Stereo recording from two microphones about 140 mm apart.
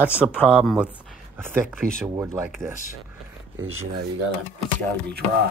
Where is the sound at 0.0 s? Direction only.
10° right (ahead or behind).